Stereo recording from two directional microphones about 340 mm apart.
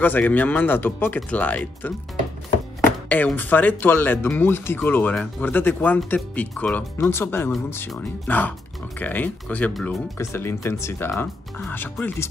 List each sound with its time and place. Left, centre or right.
0.0 s speech: centre